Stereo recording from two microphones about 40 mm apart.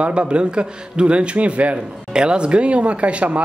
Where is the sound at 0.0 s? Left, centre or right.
Right.